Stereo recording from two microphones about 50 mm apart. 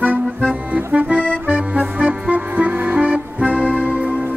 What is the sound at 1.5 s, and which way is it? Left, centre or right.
Music, right.